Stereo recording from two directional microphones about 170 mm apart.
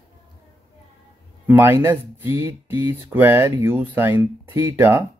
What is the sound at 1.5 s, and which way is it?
Speech, 15° right (ahead or behind).